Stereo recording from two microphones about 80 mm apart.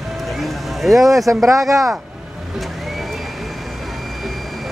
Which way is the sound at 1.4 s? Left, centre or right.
Right.